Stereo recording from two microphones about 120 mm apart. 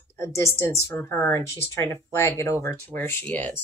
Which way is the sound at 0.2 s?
25° left (ahead or behind).